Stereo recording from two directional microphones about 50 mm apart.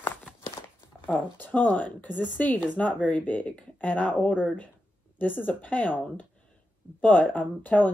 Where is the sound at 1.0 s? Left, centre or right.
Left.